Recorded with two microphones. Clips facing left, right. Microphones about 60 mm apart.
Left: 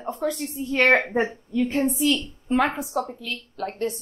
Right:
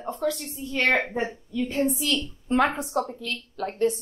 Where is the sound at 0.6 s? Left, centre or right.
Left.